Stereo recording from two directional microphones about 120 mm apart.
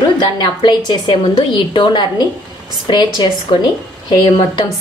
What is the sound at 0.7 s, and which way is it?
A woman's voice, 35° left (ahead or behind).